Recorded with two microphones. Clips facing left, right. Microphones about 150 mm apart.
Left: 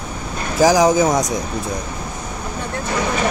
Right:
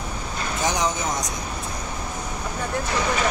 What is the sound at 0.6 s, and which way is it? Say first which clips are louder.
Speech: left 13 dB; 90° left.